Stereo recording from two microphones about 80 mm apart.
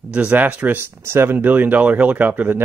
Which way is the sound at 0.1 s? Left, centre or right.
Centre.